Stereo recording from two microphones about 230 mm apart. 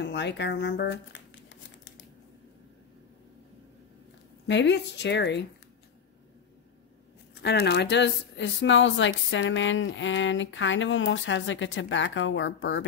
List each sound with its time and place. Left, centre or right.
0.0 s crumpling: left
4.5 s speech: left
7.4 s speech: left